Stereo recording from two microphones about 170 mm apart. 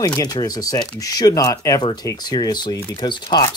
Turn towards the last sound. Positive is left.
turn(degrees=20)  # may be behind; listen again after turning